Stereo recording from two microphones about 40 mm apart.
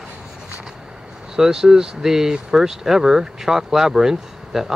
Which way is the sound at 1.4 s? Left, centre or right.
Centre.